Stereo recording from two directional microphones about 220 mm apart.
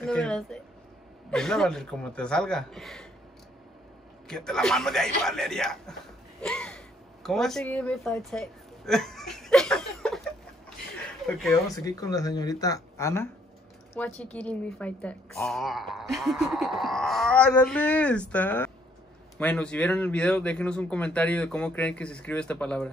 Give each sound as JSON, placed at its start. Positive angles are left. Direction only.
{"t": 0.0, "sound": "a woman's voice", "side_deg": 5}
{"t": 4.3, "sound": "a woman's voice", "side_deg": 5}
{"t": 6.4, "sound": "gasp", "side_deg": 5}
{"t": 7.2, "sound": "speech", "side_deg": 0}
{"t": 11.2, "sound": "a woman's voice", "side_deg": 0}
{"t": 11.7, "sound": "a woman's voice", "side_deg": 15}